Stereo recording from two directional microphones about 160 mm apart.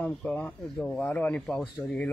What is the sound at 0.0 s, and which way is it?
Speech, 10° left (ahead or behind).